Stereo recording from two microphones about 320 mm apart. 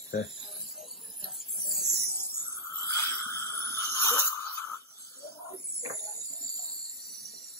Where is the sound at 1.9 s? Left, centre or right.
Right.